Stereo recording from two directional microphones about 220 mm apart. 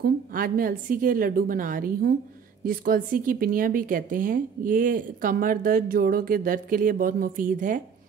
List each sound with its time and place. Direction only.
0.0 s speech: 40° right (ahead or behind)